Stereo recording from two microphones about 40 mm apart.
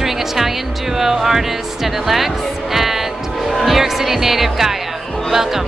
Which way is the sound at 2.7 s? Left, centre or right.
Centre.